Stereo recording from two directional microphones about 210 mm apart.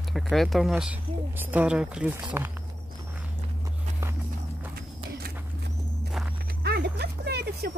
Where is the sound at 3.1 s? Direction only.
5° right (ahead or behind).